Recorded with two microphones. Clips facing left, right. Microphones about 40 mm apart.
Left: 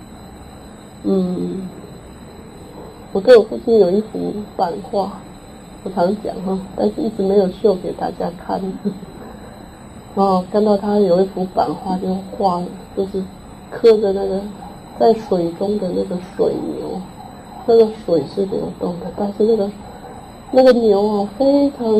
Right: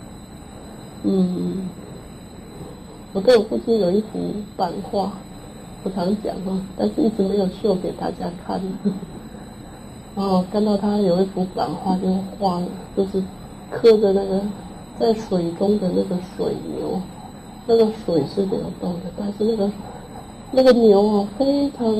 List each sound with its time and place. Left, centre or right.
1.0 s a woman's voice: centre
3.1 s a woman's voice: centre
10.1 s a woman's voice: centre
16.7 s a sound: centre
17.6 s a woman's voice: centre